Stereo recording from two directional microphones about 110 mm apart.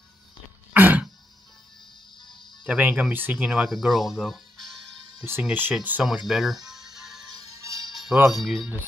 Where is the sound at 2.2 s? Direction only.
45° left (ahead or behind).